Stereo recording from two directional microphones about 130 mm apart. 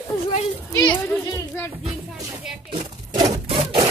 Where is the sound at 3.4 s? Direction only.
45° right (ahead or behind).